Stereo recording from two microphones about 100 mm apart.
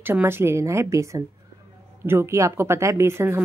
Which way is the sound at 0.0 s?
20° right (ahead or behind).